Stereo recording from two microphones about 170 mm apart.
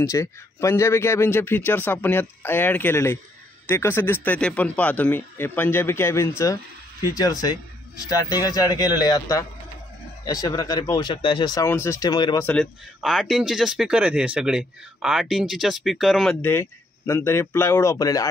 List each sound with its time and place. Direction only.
0.0 s a man's voice: 15° left (ahead or behind)
12.4 s speech: centre (ahead or behind)
16.3 s a man's voice: 15° left (ahead or behind)